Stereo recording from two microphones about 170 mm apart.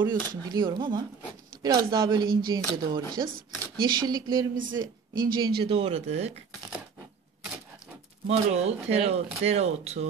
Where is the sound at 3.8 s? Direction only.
25° right (ahead or behind); by 6.3 s 40° right (ahead or behind).